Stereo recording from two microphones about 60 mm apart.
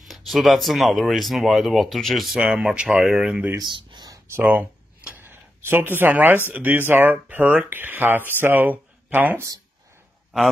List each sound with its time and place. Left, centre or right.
0.0 s speech: centre
2.3 s speech: centre
4.4 s speech: right
5.1 s a sound: right
6.5 s speech: right